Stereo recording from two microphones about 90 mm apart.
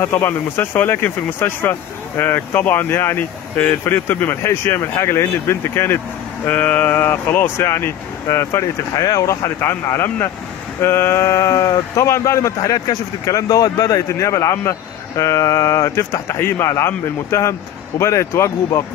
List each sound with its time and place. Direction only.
0.0 s speech: 25° left (ahead or behind)